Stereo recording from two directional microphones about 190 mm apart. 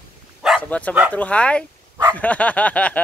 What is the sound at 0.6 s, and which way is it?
Speech, 10° left (ahead or behind).